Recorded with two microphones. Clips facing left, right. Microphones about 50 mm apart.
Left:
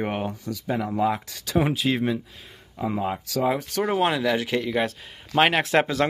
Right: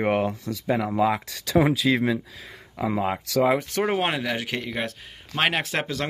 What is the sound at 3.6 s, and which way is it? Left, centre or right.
Speech, right.